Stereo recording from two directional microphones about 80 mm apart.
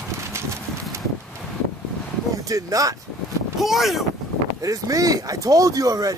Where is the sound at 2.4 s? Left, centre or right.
Right.